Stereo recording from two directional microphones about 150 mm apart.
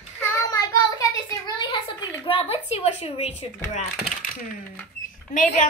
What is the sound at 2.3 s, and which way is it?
A child's voice, 40° left (ahead or behind).